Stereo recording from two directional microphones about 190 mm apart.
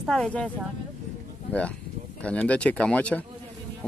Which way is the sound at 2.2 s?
5° left (ahead or behind).